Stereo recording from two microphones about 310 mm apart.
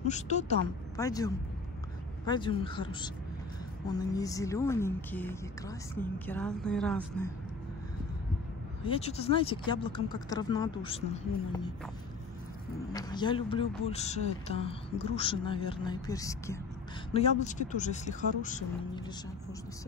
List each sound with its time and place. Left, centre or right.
0.0 s speech: left
0.9 s a woman's voice: centre
8.8 s speech: centre
12.9 s speech: centre
17.1 s speech: left